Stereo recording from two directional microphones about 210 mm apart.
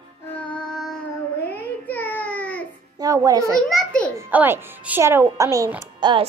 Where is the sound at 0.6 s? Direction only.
Centre (ahead or behind).